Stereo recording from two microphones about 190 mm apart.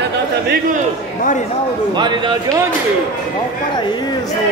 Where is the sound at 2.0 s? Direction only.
25° right (ahead or behind).